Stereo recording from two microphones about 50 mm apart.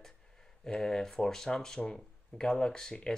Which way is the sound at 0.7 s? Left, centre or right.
Centre.